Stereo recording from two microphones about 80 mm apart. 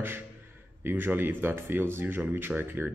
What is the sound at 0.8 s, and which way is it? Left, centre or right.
Speech, right.